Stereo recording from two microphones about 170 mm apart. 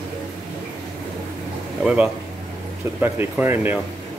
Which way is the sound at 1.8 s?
5° right (ahead or behind).